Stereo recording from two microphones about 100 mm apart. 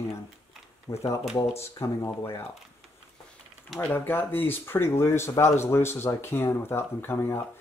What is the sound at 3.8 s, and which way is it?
Speech, 20° left (ahead or behind).